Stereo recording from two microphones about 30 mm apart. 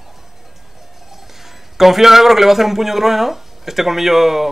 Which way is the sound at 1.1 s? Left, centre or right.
Centre.